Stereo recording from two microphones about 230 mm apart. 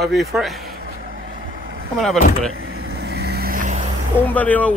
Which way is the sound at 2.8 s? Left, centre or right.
Right.